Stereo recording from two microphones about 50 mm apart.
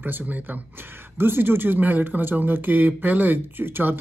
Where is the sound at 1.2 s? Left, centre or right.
Right.